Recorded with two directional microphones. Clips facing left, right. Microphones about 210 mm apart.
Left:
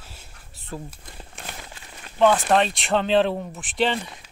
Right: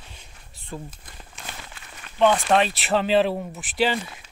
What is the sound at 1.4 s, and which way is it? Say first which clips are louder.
Crumpling: left 1 dB; 60° left (ahead or behind).